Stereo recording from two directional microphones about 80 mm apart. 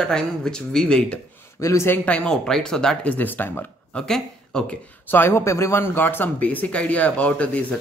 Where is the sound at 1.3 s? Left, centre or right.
Left.